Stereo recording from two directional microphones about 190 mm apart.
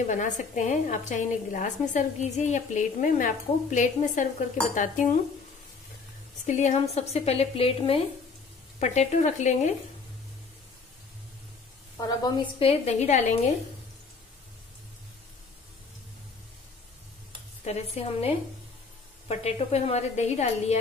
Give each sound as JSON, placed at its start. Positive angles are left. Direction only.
{"t": 0.0, "sound": "a woman's voice", "side_deg": 40}
{"t": 4.7, "sound": "dishes", "side_deg": 45}
{"t": 6.4, "sound": "a woman's voice", "side_deg": 40}
{"t": 12.0, "sound": "a woman's voice", "side_deg": 20}
{"t": 17.6, "sound": "a woman's voice", "side_deg": 30}